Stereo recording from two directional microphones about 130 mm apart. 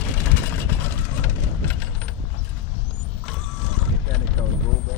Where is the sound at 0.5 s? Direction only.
15° left (ahead or behind).